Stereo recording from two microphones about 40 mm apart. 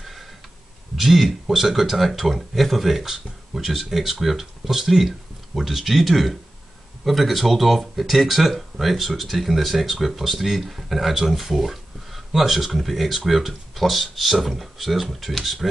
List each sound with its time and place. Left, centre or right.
0.0 s tick-tock: centre
0.9 s speech: centre